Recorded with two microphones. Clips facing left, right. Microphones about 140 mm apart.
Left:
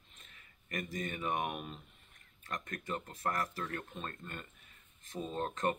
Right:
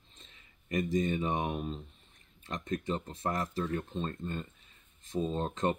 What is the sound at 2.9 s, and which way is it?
Speech, 20° right (ahead or behind).